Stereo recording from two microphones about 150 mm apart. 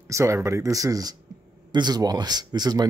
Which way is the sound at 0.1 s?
20° right (ahead or behind).